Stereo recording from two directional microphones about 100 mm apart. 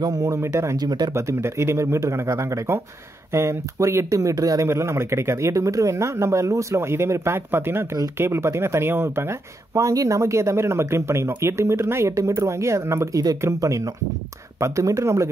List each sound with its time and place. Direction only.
0.0 s speech: 35° right (ahead or behind)
0.7 s speech: 40° right (ahead or behind)
1.1 s speech: 25° right (ahead or behind)